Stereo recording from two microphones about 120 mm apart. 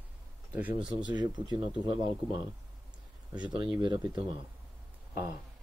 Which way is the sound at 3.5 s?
45° right (ahead or behind).